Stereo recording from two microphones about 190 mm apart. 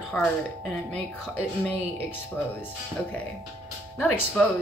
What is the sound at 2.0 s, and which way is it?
Speech, 10° left (ahead or behind).